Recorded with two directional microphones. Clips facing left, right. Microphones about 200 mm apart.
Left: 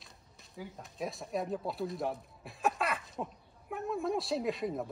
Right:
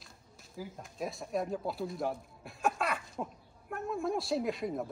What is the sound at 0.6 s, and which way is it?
Speech, centre (ahead or behind).